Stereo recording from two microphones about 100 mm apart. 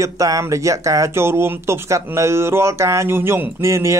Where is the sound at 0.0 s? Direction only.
30° right (ahead or behind).